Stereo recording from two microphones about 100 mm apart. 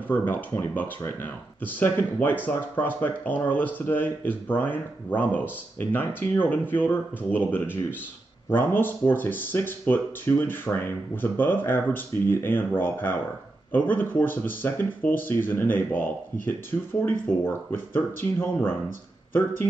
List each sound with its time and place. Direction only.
0.1 s speech: 20° left (ahead or behind)